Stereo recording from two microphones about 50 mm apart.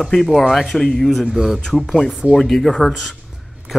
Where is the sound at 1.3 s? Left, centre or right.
Centre.